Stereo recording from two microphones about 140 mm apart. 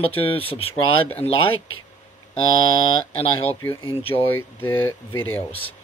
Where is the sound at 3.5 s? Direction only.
15° left (ahead or behind).